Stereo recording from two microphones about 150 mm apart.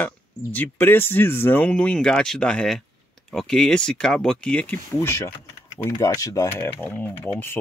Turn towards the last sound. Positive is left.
turn(degrees=10)  # may be behind; listen again after turning